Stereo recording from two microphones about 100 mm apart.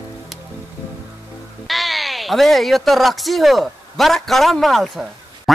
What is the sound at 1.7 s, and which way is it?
Speech, centre (ahead or behind).